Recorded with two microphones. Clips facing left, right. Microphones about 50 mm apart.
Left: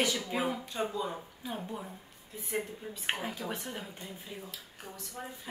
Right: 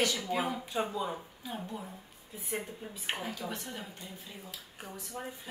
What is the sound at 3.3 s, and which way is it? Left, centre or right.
Speech, centre.